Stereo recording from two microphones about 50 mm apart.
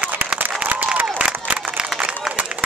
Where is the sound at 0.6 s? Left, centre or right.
Right.